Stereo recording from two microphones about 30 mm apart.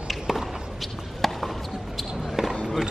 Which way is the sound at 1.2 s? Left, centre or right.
Centre.